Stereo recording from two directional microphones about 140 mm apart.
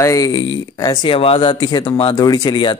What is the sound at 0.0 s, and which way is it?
Speech, 25° left (ahead or behind).